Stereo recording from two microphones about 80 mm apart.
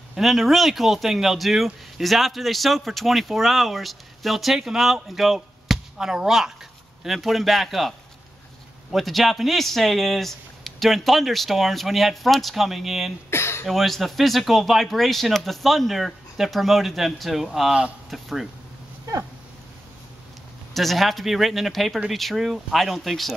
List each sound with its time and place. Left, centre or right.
0.1 s speech: centre
8.9 s speech: centre
13.3 s throat clearing: left
13.7 s speech: centre
20.7 s speech: centre